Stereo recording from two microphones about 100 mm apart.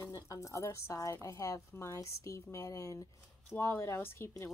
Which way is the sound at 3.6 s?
25° left (ahead or behind).